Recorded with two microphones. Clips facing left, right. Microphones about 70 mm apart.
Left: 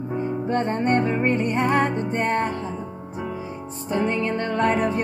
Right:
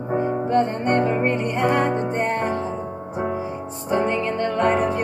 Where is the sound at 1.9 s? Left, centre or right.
Right.